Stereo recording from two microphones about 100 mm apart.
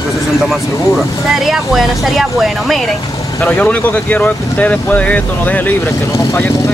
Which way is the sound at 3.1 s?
35° left (ahead or behind).